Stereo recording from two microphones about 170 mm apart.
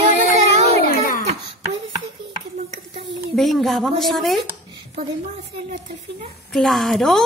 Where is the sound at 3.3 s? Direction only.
Centre (ahead or behind).